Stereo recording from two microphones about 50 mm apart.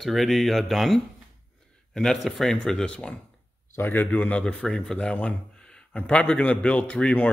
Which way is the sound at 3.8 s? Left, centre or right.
Left.